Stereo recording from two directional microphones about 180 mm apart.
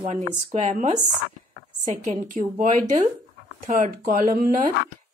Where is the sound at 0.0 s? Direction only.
40° right (ahead or behind).